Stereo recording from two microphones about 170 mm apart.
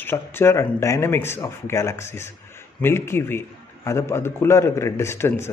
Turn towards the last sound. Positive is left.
turn(degrees=15)  # may be behind; listen again after turning